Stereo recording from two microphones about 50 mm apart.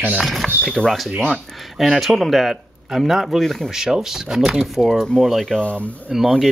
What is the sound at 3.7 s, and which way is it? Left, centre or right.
Speech, centre.